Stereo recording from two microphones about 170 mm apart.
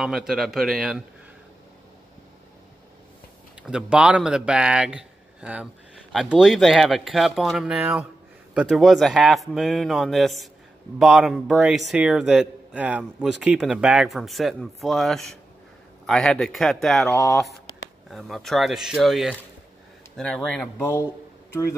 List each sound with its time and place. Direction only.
0.0 s a man's voice: 5° right (ahead or behind)
3.6 s a man's voice: 5° right (ahead or behind)
17.1 s speech: 15° left (ahead or behind)
18.1 s a man's voice: centre (ahead or behind)